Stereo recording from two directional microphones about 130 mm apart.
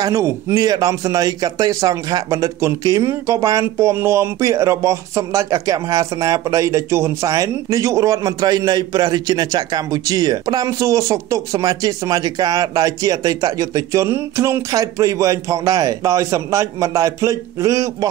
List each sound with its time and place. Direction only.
0.0 s a man's voice: 25° right (ahead or behind)